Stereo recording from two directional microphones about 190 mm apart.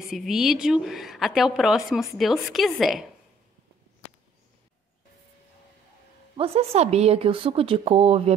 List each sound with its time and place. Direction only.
0.1 s a woman's voice: centre (ahead or behind)
6.3 s speech: 30° right (ahead or behind)